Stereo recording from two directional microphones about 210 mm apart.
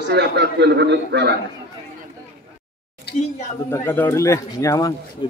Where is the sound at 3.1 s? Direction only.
50° left (ahead or behind).